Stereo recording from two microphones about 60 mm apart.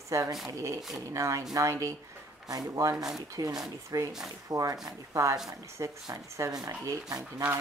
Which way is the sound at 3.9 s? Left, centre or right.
Right.